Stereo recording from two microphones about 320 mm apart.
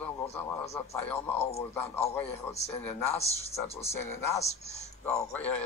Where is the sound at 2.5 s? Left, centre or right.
Centre.